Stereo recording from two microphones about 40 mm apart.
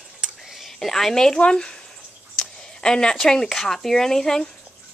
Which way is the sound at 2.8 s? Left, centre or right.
Centre.